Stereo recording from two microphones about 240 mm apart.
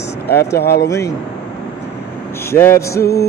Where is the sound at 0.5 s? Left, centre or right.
Left.